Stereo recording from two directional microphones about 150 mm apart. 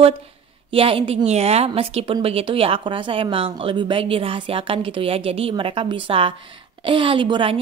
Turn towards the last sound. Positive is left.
turn(degrees=-35)  # may be behind; listen again after turning